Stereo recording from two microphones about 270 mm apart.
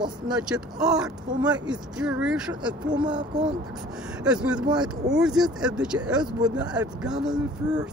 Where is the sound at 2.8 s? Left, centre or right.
Centre.